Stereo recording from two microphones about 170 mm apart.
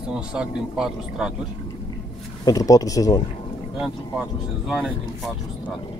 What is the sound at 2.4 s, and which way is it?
Speech, 20° left (ahead or behind).